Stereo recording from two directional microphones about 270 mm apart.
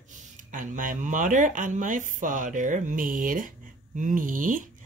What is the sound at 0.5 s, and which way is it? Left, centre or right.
Speech, right.